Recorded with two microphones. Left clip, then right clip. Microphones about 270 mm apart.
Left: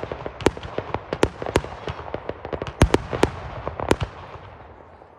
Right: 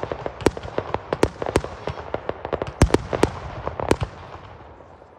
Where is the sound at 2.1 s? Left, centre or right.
Centre.